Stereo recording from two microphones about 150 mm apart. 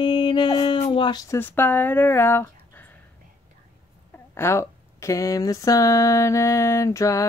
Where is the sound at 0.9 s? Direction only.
35° left (ahead or behind).